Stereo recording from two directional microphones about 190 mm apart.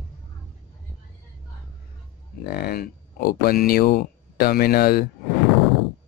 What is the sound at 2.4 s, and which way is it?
Speech, 55° left (ahead or behind).